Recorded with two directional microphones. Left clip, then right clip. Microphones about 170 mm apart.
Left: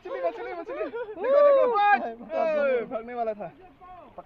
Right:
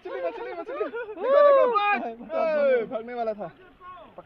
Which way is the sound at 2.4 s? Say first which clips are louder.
Right 2 dB; 20° right (ahead or behind).